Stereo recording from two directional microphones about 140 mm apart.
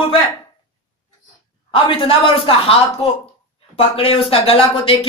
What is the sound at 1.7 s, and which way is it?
Speech, 40° left (ahead or behind).